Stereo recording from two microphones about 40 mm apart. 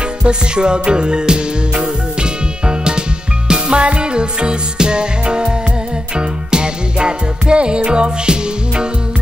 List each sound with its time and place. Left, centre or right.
0.2 s music: right